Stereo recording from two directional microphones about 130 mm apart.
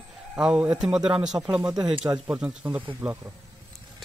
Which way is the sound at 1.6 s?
25° right (ahead or behind).